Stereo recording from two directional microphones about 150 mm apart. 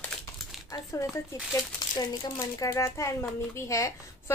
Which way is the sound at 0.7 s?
20° left (ahead or behind).